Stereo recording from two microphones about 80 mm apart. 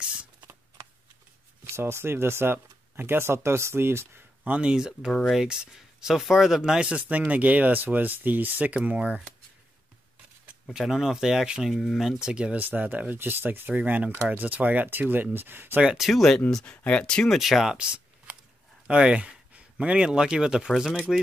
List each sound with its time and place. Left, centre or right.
0.0 s shuffling cards: centre
1.6 s speech: right
4.5 s speech: centre
10.4 s speech: centre; by 15.8 s right
15.8 s speech: centre
16.1 s speech: centre
17.4 s speech: centre